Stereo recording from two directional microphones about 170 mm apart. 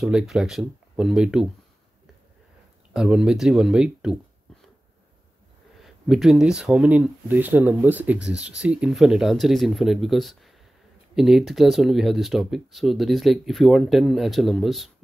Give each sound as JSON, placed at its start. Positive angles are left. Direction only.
{"t": 0.0, "sound": "speech", "side_deg": -5}
{"t": 2.9, "sound": "speech", "side_deg": -5}
{"t": 5.8, "sound": "speech", "side_deg": 0}